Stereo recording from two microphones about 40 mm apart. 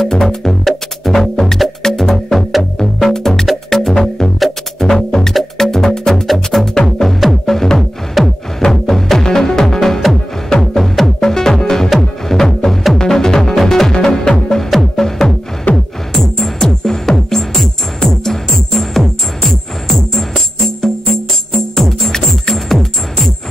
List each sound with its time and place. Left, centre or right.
0.1 s music: centre
4.9 s music: centre
7.0 s music: centre